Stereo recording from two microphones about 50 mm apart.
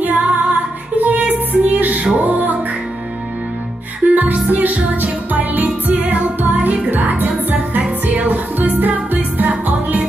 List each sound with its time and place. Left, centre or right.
0.0 s music: right
4.1 s music: right